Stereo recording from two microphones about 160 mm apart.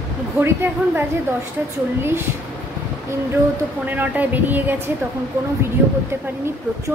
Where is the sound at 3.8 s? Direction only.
10° right (ahead or behind).